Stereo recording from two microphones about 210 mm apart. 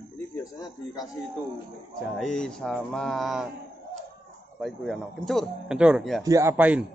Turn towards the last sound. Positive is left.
turn(degrees=-5)  # may be behind; listen again after turning